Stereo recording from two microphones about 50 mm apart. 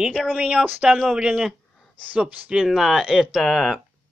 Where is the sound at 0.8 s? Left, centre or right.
Centre.